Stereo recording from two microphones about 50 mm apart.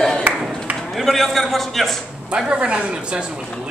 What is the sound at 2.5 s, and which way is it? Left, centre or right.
A woman's voice, right.